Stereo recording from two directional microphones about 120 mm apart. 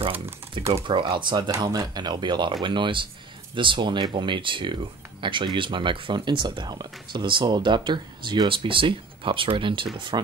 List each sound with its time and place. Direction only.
0.8 s speech: 45° right (ahead or behind)